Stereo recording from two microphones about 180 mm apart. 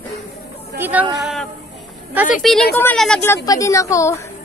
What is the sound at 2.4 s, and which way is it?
Speech, 5° left (ahead or behind).